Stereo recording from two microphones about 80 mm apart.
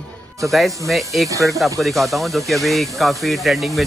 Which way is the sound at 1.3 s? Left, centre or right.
Right.